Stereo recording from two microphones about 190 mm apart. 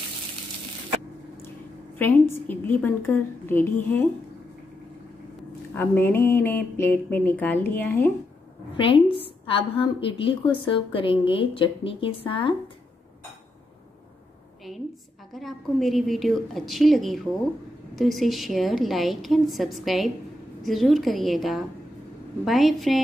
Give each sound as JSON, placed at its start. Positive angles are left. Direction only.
{"t": 2.0, "sound": "speech", "side_deg": 10}
{"t": 5.7, "sound": "speech", "side_deg": 10}
{"t": 8.7, "sound": "a woman's voice", "side_deg": 25}
{"t": 15.3, "sound": "a woman's voice", "side_deg": 0}